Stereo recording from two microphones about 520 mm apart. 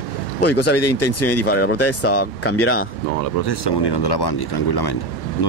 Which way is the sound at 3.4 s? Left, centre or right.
Left.